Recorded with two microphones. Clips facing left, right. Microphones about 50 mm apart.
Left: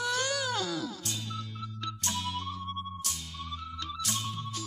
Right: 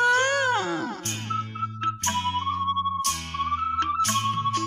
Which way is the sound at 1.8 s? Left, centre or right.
Right.